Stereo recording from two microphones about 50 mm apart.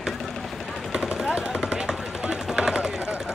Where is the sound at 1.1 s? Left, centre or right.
Centre.